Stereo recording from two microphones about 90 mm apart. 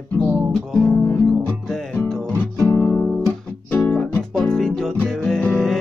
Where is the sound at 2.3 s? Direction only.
20° left (ahead or behind).